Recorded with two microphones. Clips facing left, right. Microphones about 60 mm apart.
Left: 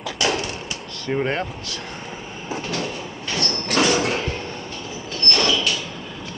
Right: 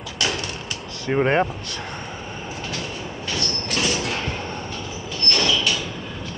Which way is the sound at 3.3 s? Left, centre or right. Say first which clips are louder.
Left 6 dB; left.